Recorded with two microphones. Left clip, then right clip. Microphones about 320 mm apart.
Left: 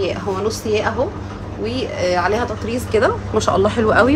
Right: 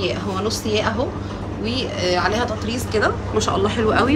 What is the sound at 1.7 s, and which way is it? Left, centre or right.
A woman's voice, left.